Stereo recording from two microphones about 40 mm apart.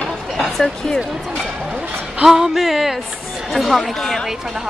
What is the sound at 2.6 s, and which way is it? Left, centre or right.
Speech, centre.